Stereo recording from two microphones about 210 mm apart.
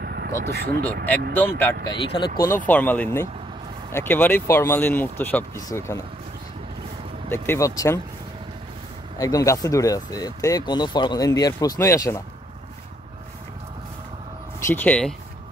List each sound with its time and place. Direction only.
0.0 s vehicle: 50° right (ahead or behind)
0.5 s speech: 50° right (ahead or behind)
1.3 s speech: 10° left (ahead or behind)
1.9 s speech: 20° left (ahead or behind)
2.4 s speech: 10° left (ahead or behind)
7.2 s speech: 10° left (ahead or behind)
9.2 s speech: 15° left (ahead or behind)
14.7 s speech: 10° left (ahead or behind)